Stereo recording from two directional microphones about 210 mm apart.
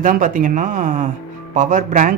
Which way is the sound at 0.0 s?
40° right (ahead or behind).